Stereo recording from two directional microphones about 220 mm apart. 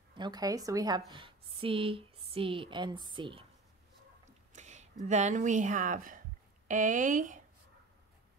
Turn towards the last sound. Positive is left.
turn(degrees=-35)  # may be behind; listen again after turning